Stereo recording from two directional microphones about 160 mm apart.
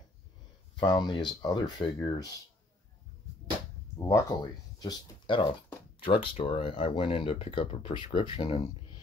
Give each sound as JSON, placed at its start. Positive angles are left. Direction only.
{"t": 0.7, "sound": "speech", "side_deg": 25}
{"t": 4.0, "sound": "speech", "side_deg": 25}